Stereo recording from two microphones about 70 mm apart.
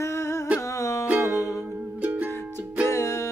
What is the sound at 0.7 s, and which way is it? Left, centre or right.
Music, left.